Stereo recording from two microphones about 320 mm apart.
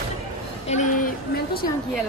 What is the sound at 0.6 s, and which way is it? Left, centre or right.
Speech, left.